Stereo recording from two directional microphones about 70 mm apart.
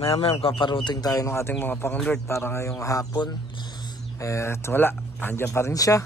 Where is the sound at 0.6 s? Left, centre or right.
Left.